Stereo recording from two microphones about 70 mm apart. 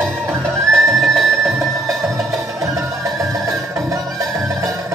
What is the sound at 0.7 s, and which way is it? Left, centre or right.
Music, centre.